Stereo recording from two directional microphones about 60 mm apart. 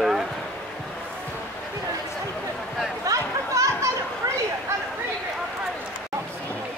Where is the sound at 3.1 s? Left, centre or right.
Right.